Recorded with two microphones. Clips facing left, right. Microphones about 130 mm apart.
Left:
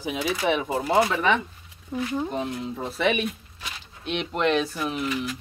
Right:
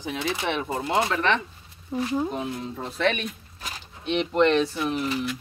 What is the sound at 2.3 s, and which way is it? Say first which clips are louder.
Speech: left 1 dB; centre (ahead or behind).